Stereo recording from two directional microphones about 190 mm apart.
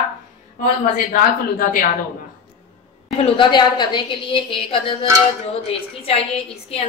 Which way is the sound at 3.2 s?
25° left (ahead or behind).